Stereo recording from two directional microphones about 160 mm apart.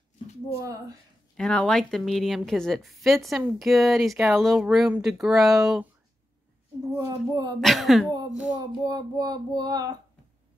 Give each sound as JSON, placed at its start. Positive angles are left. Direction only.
{"t": 0.6, "sound": "child singing", "side_deg": -20}
{"t": 1.3, "sound": "a woman's voice", "side_deg": 5}
{"t": 7.0, "sound": "child singing", "side_deg": -20}
{"t": 7.6, "sound": "a woman's voice", "side_deg": 0}
{"t": 8.5, "sound": "child singing", "side_deg": -25}